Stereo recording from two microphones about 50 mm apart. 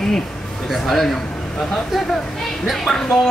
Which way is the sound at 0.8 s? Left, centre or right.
Centre.